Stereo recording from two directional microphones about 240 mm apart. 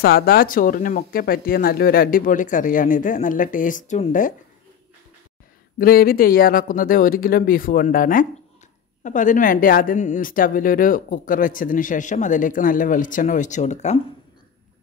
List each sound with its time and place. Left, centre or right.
0.0 s a woman's voice: left
5.8 s a woman's voice: left